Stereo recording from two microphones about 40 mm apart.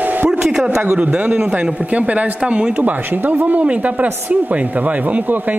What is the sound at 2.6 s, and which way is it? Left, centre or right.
Speech, right.